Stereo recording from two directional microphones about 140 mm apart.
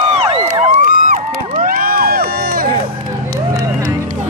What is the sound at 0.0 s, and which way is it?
Crowd, 45° right (ahead or behind).